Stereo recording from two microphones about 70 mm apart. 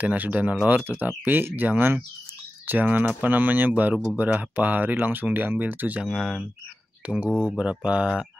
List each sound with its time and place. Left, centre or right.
0.0 s speech: right
6.0 s speech: centre
7.2 s speech: right